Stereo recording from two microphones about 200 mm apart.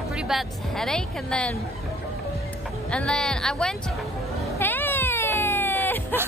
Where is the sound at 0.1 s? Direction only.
Centre (ahead or behind).